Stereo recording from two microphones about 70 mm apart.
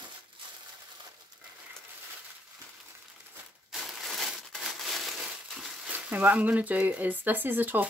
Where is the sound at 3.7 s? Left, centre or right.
Centre.